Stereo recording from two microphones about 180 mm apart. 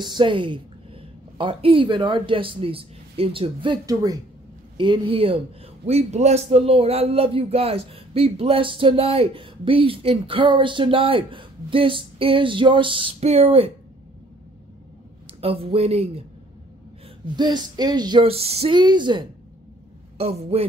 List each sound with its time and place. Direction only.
0.0 s a man's voice: 25° right (ahead or behind)
15.4 s a man's voice: 30° right (ahead or behind)
17.4 s a man's voice: 25° right (ahead or behind)